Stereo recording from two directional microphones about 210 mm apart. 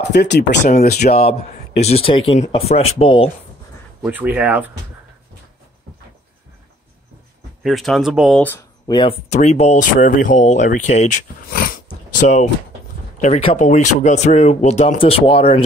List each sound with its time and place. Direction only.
0.1 s speech: 50° left (ahead or behind); by 3.3 s 25° left (ahead or behind)
4.0 s speech: 10° right (ahead or behind)
7.6 s speech: centre (ahead or behind); by 11.8 s 40° left (ahead or behind)
11.9 s a sound: 35° left (ahead or behind)
13.2 s speech: 30° left (ahead or behind)